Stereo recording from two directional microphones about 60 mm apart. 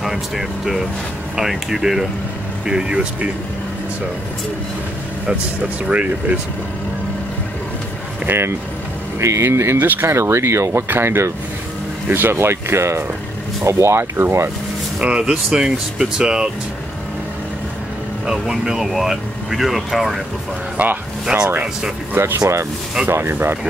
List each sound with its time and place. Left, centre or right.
0.0 s speech: centre
5.9 s speech: right
8.3 s speech: right
15.0 s speech: centre
18.2 s speech: centre
20.7 s speech: right
22.1 s speech: right